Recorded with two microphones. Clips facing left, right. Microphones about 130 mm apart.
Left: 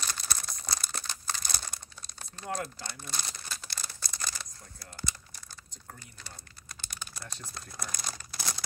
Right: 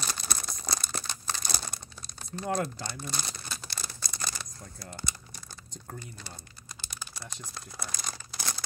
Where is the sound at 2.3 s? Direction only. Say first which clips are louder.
Right 6 dB; 30° right (ahead or behind).